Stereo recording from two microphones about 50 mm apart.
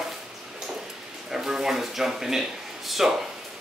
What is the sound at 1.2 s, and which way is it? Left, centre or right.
Speech, centre.